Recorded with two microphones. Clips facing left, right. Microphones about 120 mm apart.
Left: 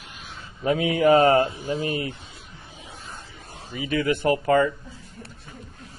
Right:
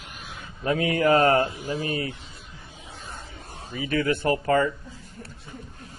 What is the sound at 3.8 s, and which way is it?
Speech, 20° left (ahead or behind).